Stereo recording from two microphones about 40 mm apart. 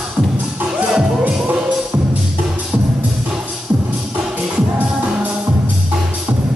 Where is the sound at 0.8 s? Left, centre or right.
Right.